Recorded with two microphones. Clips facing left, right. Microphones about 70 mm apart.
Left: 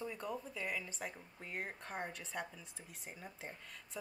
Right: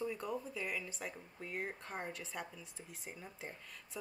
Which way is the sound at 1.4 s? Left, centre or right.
Left.